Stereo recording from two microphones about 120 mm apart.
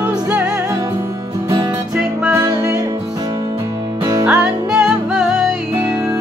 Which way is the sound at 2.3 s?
25° right (ahead or behind).